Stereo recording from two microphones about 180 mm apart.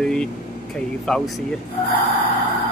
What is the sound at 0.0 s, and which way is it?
Speech, 5° left (ahead or behind).